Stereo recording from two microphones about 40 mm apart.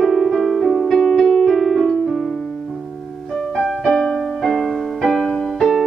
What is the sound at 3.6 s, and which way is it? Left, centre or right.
Piano, centre.